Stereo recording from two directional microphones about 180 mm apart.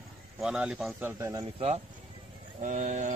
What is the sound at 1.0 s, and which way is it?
Speech, 15° right (ahead or behind).